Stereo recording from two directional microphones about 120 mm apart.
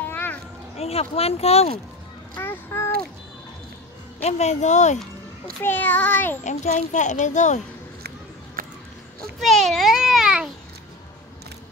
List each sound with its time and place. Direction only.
0.0 s children playing: 15° left (ahead or behind)
0.7 s speech: 60° left (ahead or behind)
2.3 s a child's voice: 20° left (ahead or behind)
4.2 s speech: 70° left (ahead or behind)
5.6 s child singing: 15° left (ahead or behind)
6.4 s speech: 85° left
9.4 s a sound: centre (ahead or behind)